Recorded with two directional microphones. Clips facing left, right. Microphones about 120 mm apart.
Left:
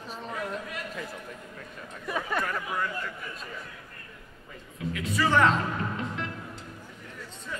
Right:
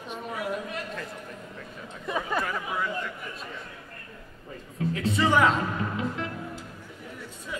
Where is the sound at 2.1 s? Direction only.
Centre (ahead or behind).